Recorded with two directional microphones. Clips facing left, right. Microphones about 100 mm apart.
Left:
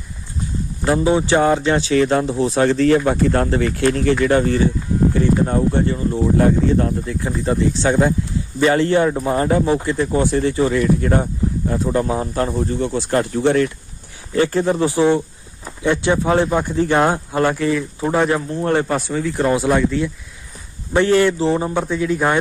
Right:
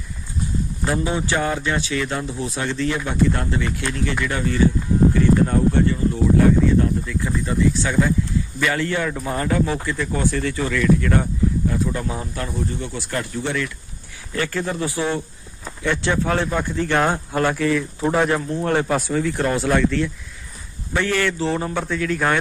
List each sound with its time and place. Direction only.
0.8 s a man's voice: 25° left (ahead or behind); by 13.7 s 40° left (ahead or behind)
14.3 s a man's voice: 25° left (ahead or behind)
17.3 s speech: 5° left (ahead or behind)
19.2 s speech: 10° left (ahead or behind)
20.9 s a man's voice: 25° left (ahead or behind)